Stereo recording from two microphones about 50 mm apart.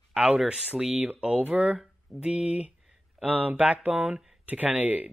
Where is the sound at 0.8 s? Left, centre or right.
Centre.